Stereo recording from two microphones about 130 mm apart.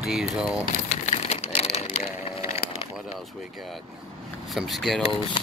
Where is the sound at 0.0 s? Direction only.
5° right (ahead or behind).